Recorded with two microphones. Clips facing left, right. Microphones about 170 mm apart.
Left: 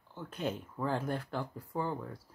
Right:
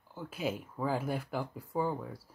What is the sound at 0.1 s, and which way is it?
Speech, 5° right (ahead or behind).